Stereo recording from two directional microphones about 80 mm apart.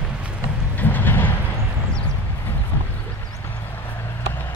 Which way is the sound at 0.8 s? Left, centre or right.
Left.